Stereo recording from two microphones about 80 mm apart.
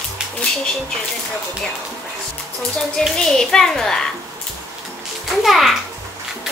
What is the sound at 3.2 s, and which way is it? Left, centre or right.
Speech, centre.